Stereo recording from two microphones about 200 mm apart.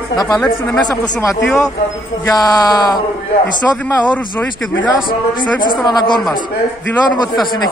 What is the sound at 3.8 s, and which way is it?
Speech, 10° left (ahead or behind).